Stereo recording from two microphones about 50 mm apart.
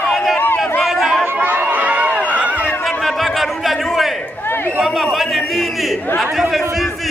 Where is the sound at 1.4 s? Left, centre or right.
Right.